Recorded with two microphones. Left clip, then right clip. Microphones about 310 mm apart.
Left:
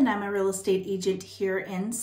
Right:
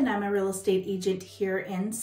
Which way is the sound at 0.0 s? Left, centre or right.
Centre.